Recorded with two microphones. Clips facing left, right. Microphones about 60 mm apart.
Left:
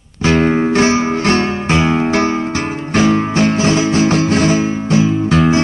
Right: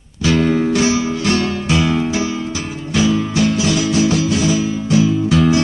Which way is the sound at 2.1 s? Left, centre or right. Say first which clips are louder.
Left 5 dB; left.